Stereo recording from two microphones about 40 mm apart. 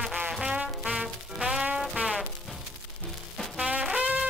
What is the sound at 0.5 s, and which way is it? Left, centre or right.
Music, right.